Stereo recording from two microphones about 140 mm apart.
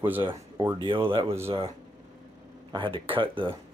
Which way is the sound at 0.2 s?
35° right (ahead or behind).